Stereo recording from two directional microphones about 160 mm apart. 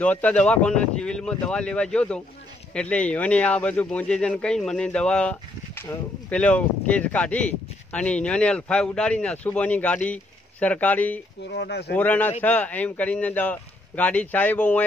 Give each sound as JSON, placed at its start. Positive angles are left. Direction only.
{"t": 0.0, "sound": "speech", "side_deg": 10}
{"t": 11.4, "sound": "speech", "side_deg": 90}
{"t": 11.9, "sound": "speech", "side_deg": 10}